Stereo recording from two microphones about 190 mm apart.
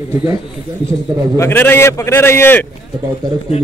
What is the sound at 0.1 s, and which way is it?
Speech, 15° right (ahead or behind).